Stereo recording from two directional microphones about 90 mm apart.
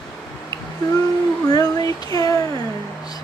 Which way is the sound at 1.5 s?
45° left (ahead or behind).